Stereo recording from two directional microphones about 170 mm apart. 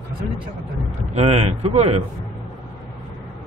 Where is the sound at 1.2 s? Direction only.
40° right (ahead or behind).